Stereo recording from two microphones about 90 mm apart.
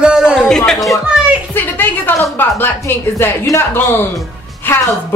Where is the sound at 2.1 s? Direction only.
25° left (ahead or behind).